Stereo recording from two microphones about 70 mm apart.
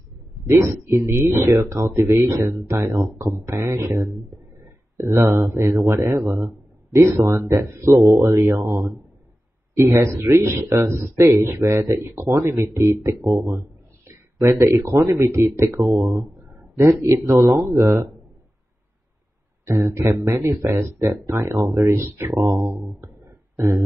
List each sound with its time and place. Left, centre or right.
0.5 s speech: right
16.0 s speech: right
19.6 s speech: right